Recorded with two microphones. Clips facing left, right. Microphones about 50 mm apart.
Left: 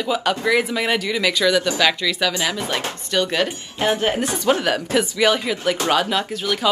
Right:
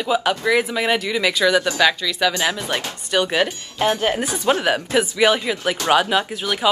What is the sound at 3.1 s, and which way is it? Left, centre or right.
Speech, centre.